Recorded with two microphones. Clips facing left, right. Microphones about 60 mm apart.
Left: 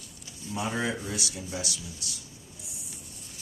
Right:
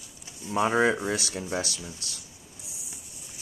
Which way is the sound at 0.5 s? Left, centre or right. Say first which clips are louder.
Right 7 dB; right.